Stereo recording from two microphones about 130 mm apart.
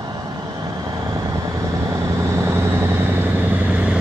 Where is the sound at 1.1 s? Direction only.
25° right (ahead or behind).